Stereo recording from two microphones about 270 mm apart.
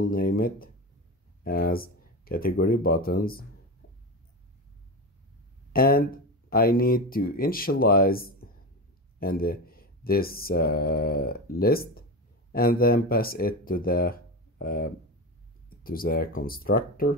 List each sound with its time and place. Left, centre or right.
0.0 s speech: left
5.7 s speech: left